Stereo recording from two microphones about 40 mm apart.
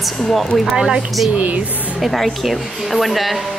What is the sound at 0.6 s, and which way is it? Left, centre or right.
Speech, centre.